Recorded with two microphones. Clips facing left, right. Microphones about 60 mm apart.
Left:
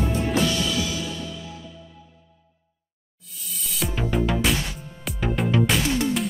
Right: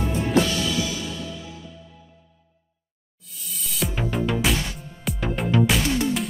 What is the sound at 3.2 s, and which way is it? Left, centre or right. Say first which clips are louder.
Music: even; centre.